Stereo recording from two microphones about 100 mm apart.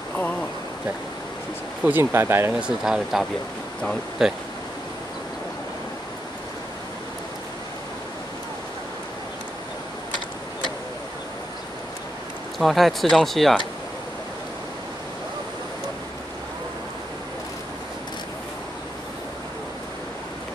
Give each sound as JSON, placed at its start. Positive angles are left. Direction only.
{"t": 0.1, "sound": "a sound", "side_deg": 15}
{"t": 1.9, "sound": "speech", "side_deg": -20}
{"t": 2.5, "sound": "speech", "side_deg": -10}
{"t": 12.5, "sound": "speech", "side_deg": 0}